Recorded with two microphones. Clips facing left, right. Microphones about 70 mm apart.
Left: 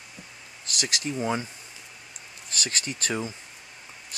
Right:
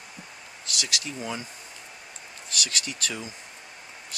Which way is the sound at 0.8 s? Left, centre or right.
Left.